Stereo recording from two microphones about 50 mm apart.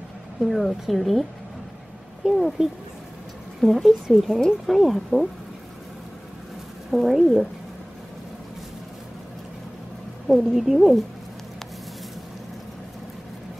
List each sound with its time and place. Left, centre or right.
0.4 s speech: centre
2.2 s speech: centre
3.6 s speech: centre
6.9 s speech: centre
10.2 s speech: centre